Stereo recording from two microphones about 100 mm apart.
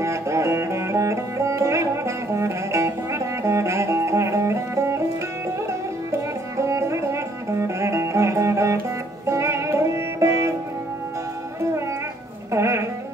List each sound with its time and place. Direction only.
0.0 s music: 30° right (ahead or behind)
6.6 s music: 30° right (ahead or behind)
12.5 s music: 30° right (ahead or behind)